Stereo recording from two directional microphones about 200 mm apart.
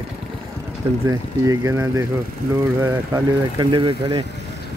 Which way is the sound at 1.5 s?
15° right (ahead or behind).